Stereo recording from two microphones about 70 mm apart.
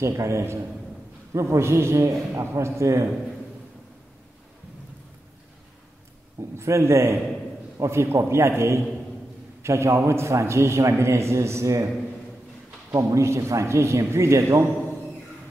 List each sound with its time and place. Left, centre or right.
0.0 s a man's voice: right
6.5 s a man's voice: right
12.9 s a man's voice: right